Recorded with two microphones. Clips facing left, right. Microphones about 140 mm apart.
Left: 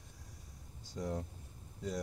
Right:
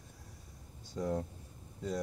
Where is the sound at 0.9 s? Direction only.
55° right (ahead or behind).